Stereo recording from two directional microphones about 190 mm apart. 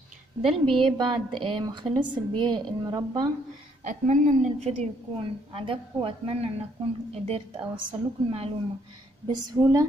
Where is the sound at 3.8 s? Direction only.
40° right (ahead or behind).